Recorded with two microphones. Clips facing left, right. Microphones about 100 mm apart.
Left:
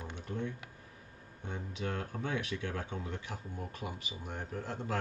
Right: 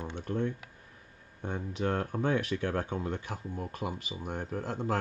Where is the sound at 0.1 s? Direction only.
55° right (ahead or behind).